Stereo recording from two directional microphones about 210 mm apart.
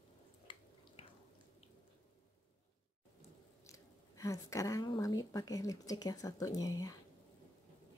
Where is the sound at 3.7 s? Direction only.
15° left (ahead or behind).